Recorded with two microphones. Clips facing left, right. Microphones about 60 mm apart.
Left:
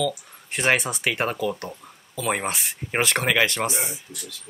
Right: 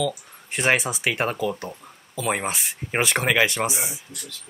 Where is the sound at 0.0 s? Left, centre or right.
Centre.